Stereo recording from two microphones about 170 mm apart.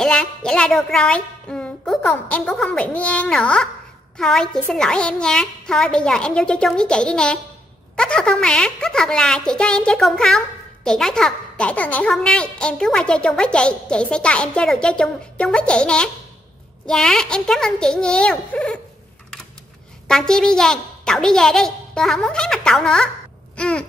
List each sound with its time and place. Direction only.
0.0 s a woman's voice: 5° left (ahead or behind)
20.1 s a woman's voice: 5° left (ahead or behind)
23.5 s a sound: 5° left (ahead or behind)